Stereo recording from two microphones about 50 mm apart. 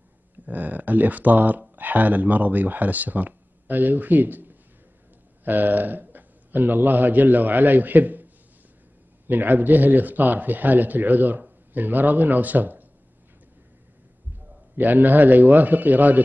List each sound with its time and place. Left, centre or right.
0.5 s a man's voice: right
9.3 s speech: right
14.8 s speech: right